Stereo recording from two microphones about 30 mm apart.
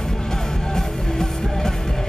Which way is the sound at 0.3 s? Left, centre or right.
Centre.